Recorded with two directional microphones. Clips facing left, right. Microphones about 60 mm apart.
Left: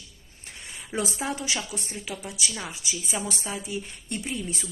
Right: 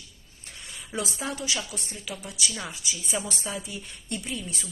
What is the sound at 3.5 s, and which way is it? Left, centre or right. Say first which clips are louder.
Speech: left 3 dB; centre.